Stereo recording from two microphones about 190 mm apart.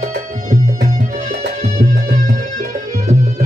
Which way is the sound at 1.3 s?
50° right (ahead or behind).